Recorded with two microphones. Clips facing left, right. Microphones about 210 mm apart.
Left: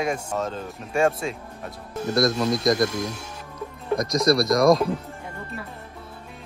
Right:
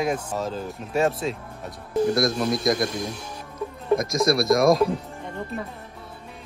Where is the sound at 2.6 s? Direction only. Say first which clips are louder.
Left 2 dB; 25° right (ahead or behind).